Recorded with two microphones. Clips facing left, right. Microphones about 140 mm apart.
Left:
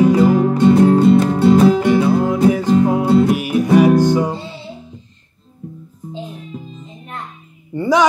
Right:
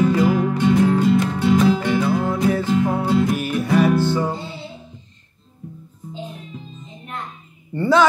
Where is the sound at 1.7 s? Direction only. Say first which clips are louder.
Left 6 dB; 15° left (ahead or behind).